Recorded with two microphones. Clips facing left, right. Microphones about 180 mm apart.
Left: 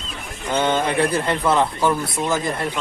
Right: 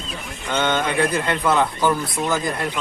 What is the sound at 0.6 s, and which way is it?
Speech, 30° left (ahead or behind).